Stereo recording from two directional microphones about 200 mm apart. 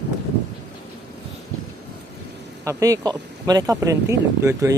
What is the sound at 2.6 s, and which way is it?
Speech, 15° right (ahead or behind).